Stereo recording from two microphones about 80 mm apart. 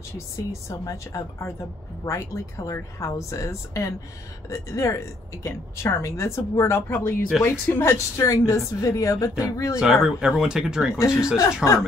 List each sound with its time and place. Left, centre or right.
0.5 s a woman's voice: left
9.8 s speech: centre
11.0 s a woman's voice: left
11.6 s speech: centre